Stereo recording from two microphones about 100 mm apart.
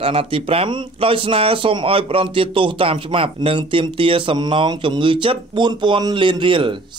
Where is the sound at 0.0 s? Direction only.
70° right (ahead or behind).